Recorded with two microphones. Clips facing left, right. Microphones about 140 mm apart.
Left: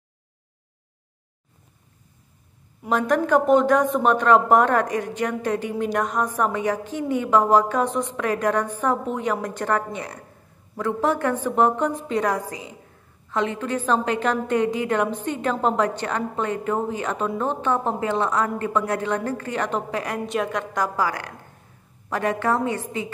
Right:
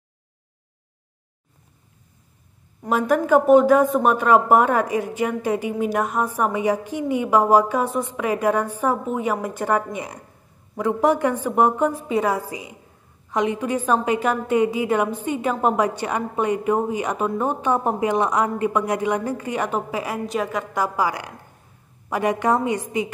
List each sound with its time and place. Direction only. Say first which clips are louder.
2.9 s speech: right 2 dB; 5° right (ahead or behind)